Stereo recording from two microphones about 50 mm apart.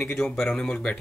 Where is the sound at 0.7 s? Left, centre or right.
Left.